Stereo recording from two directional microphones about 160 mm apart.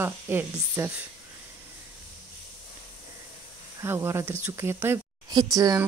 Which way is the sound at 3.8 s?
15° right (ahead or behind).